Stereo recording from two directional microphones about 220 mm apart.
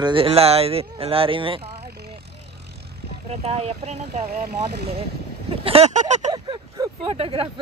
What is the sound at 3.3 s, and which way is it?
Speech, 25° right (ahead or behind).